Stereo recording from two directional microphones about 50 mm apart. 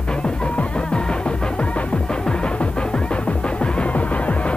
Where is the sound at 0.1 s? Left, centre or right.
Centre.